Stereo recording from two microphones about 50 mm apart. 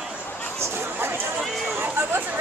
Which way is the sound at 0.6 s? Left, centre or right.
Right.